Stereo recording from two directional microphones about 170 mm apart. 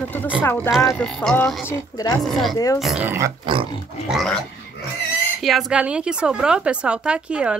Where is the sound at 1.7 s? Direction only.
20° left (ahead or behind).